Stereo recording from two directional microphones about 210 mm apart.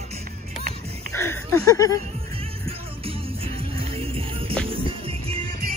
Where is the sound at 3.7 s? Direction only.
25° right (ahead or behind).